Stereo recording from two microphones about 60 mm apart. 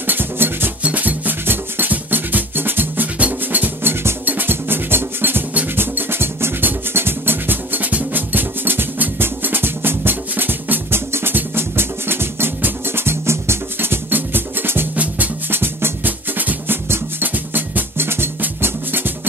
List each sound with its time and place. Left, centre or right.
0.0 s music: right